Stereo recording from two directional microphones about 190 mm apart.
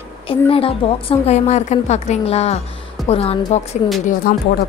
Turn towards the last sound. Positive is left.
turn(degrees=50)  # may be behind; listen again after turning